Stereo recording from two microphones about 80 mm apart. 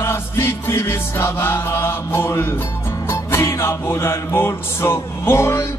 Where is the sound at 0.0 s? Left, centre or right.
Left.